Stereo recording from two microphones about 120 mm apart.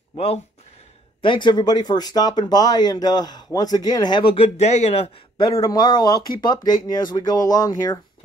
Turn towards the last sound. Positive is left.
turn(degrees=30)  # may be behind; listen again after turning